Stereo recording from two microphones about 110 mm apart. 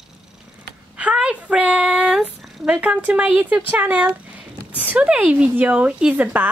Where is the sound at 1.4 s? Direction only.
10° right (ahead or behind).